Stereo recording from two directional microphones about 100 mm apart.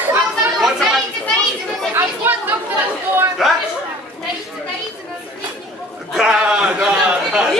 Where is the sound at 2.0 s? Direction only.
20° right (ahead or behind).